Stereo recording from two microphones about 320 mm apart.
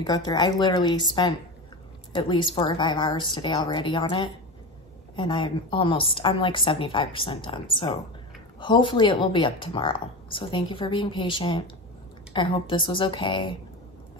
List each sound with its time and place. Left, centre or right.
0.0 s speech: centre